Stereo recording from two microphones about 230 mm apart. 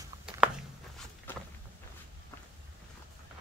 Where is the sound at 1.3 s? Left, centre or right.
Centre.